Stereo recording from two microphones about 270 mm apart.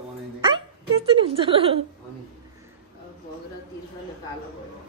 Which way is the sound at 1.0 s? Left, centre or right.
Centre.